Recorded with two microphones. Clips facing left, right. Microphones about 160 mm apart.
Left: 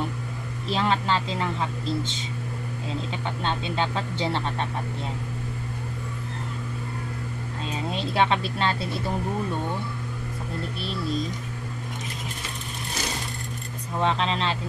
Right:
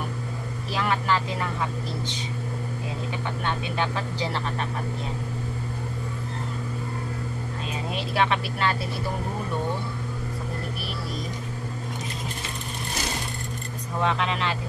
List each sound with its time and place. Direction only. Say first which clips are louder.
0.7 s speech: left 1 dB; 25° left (ahead or behind)
3.1 s speech: right 1 dB; 25° left (ahead or behind)
7.9 s speech: left 1 dB; 25° left (ahead or behind)
14.0 s speech: left 1 dB; 30° left (ahead or behind)